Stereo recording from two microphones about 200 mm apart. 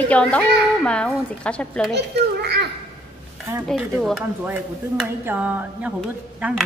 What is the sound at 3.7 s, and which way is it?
Speech, centre (ahead or behind).